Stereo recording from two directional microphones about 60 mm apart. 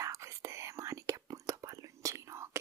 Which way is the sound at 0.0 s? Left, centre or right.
Right.